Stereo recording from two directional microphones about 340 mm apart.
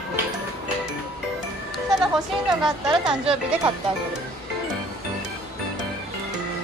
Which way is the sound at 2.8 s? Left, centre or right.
Centre.